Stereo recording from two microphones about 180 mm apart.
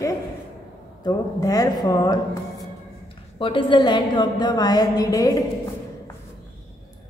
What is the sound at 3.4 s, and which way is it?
A woman's voice, 25° left (ahead or behind).